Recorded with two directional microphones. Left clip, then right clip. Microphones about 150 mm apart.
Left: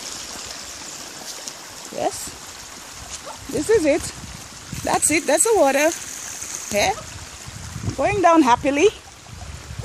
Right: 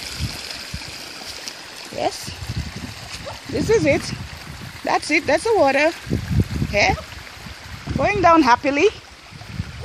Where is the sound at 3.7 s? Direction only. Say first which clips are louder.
Even; 5° right (ahead or behind).